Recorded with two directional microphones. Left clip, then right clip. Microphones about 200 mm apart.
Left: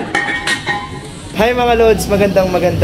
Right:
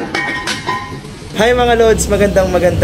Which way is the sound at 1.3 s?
5° right (ahead or behind).